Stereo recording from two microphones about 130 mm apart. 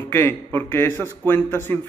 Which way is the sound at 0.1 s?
20° left (ahead or behind).